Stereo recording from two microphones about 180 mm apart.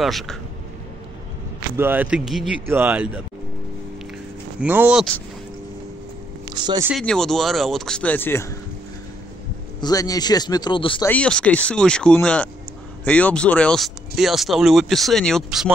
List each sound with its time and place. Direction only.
0.0 s speech: centre (ahead or behind)
1.8 s speech: 10° right (ahead or behind)
4.6 s speech: 10° right (ahead or behind)
6.4 s a sound: 25° right (ahead or behind)
7.0 s speech: centre (ahead or behind)
9.8 s speech: 20° left (ahead or behind)
11.1 s speech: 5° left (ahead or behind)